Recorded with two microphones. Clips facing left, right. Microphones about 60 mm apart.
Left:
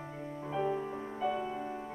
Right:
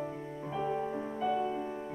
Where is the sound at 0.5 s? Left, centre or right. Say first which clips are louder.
Even; centre.